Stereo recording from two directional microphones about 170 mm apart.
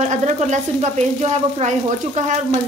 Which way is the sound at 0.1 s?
40° right (ahead or behind).